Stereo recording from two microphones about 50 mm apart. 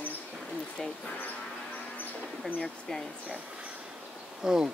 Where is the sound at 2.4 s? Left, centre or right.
Centre.